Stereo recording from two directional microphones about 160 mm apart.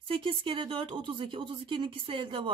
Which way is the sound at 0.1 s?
35° right (ahead or behind).